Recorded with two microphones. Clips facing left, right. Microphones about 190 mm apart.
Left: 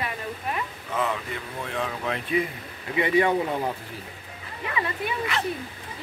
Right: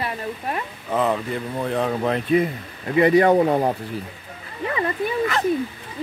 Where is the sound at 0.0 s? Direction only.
35° right (ahead or behind).